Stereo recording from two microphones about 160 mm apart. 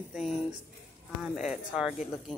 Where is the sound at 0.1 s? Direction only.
Centre (ahead or behind).